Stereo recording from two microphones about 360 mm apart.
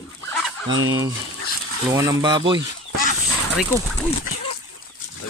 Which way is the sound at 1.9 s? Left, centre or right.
Centre.